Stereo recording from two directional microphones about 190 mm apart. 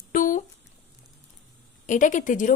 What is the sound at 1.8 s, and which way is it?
Speech, 40° left (ahead or behind).